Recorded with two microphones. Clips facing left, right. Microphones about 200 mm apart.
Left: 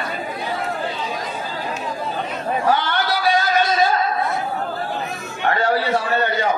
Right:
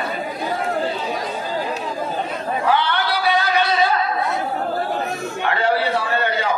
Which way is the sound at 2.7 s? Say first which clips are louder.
Right 1 dB; 45° left (ahead or behind).